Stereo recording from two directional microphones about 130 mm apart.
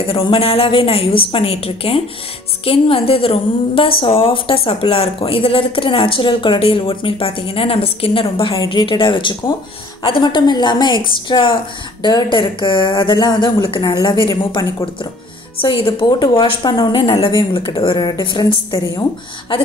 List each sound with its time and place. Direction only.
0.0 s a woman's voice: 45° left (ahead or behind)